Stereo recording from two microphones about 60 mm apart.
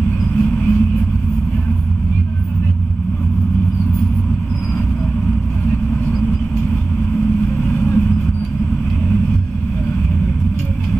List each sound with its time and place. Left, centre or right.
0.4 s vehicle: left
7.6 s vehicle: left